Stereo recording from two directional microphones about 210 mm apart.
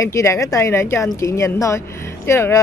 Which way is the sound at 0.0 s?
15° left (ahead or behind).